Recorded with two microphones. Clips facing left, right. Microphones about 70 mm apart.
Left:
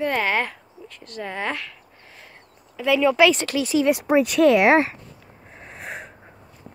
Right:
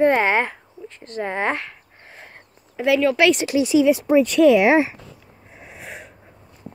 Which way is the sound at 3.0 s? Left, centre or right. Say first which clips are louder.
Left 2 dB; centre.